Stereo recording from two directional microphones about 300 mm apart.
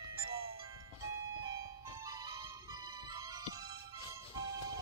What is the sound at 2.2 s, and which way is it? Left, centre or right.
Music, centre.